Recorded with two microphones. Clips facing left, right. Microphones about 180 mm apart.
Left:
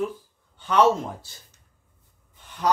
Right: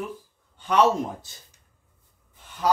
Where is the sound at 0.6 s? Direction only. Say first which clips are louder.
Left 1 dB; 15° right (ahead or behind).